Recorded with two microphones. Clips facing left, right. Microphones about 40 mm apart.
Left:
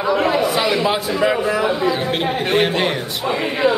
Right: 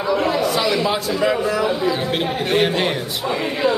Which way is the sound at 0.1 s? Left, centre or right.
Centre.